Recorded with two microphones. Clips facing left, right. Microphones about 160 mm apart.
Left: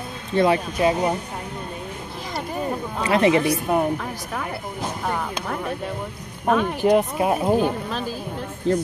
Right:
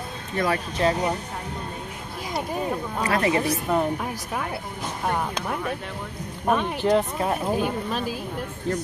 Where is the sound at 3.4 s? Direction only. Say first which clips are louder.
Left 3 dB; 15° left (ahead or behind).